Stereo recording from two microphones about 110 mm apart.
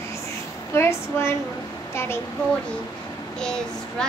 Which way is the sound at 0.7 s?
25° left (ahead or behind).